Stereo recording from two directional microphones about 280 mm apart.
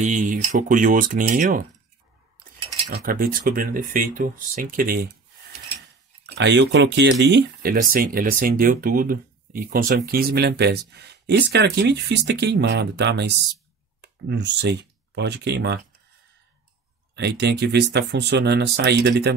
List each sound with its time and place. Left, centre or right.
0.0 s speech: right
2.9 s speech: right
6.2 s speech: right
17.1 s speech: right